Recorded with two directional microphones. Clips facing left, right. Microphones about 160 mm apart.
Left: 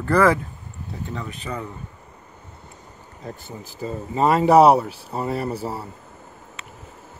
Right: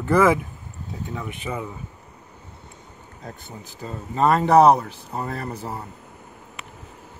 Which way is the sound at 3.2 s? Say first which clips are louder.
Left 3 dB; 5° left (ahead or behind).